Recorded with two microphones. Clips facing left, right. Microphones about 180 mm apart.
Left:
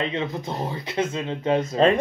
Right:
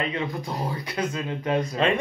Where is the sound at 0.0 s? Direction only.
25° left (ahead or behind).